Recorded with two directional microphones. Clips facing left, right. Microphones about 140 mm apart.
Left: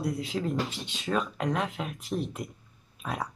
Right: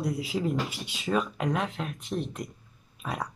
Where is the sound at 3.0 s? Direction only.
Centre (ahead or behind).